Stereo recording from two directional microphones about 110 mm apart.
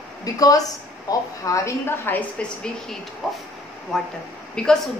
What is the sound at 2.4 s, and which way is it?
Speech, 10° left (ahead or behind).